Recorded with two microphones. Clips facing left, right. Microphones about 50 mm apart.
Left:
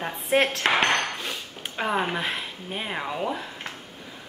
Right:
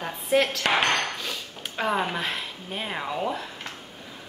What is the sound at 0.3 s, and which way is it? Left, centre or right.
Speech, left.